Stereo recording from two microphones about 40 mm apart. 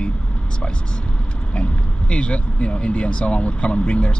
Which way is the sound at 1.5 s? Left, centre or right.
Left.